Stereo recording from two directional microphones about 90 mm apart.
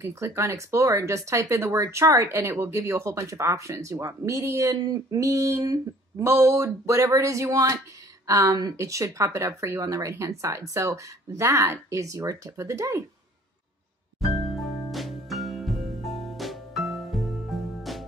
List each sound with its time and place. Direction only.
0.0 s speech: 30° right (ahead or behind)
14.2 s music: centre (ahead or behind)